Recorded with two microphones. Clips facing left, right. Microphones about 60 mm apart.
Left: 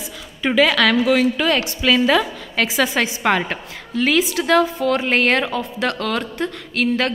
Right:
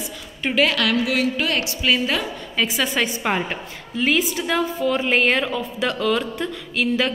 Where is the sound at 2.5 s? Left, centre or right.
Left.